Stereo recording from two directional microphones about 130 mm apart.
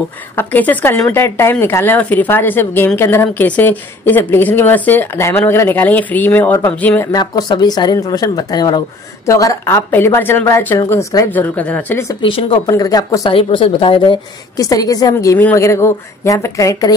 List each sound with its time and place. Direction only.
0.4 s speech: 15° left (ahead or behind)
7.1 s speech: 30° left (ahead or behind)
11.3 s speech: 10° left (ahead or behind)
12.2 s a woman's voice: 45° left (ahead or behind)
12.6 s speech: 30° left (ahead or behind)
13.3 s a woman's voice: 40° left (ahead or behind)
14.6 s speech: 30° left (ahead or behind)